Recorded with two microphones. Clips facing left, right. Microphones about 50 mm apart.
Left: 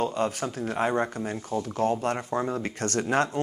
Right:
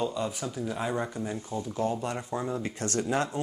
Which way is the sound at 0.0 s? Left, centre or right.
Left.